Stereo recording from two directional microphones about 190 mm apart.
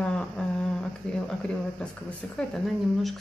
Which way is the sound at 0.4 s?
5° left (ahead or behind).